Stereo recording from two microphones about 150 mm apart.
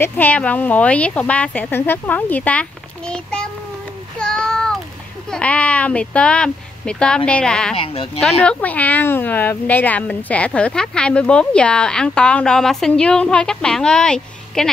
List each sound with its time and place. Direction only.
0.0 s speech: 10° left (ahead or behind)
4.2 s a sound: 5° left (ahead or behind)
5.3 s speech: 10° left (ahead or behind)
7.7 s speech: 40° left (ahead or behind)
8.2 s speech: 5° left (ahead or behind)